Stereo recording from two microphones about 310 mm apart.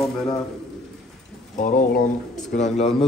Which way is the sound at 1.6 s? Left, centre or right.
Left.